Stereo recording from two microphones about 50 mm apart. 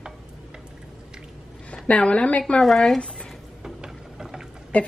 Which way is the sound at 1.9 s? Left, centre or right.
Left.